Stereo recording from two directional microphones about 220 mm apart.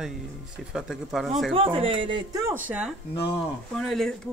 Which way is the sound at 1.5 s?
25° right (ahead or behind).